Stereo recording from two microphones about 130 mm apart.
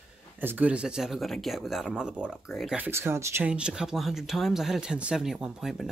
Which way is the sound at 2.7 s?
15° right (ahead or behind).